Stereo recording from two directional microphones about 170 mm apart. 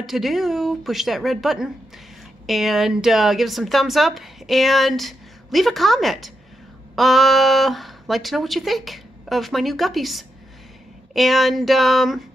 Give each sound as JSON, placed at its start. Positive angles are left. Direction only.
{"t": 0.0, "sound": "speech", "side_deg": 0}